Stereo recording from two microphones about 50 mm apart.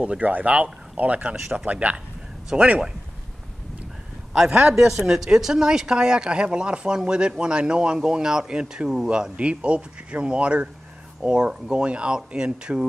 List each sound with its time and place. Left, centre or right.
0.0 s speech: right
1.3 s speech: centre
1.7 s speech: right
4.3 s a man's voice: centre
9.4 s speech: right